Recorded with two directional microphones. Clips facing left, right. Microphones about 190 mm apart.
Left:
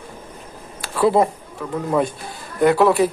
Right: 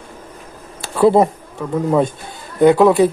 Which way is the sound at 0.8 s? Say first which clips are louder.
Right 4 dB; 25° right (ahead or behind).